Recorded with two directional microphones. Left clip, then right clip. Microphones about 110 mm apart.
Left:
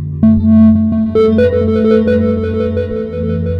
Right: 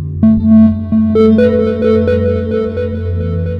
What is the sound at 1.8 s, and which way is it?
Music, 20° right (ahead or behind).